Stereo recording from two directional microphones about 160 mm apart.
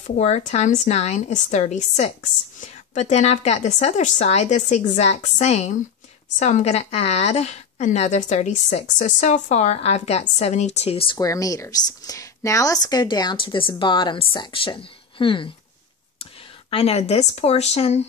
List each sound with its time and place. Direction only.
0.0 s a woman's voice: 50° left (ahead or behind)
11.1 s speech: 20° left (ahead or behind)
16.7 s speech: 40° left (ahead or behind)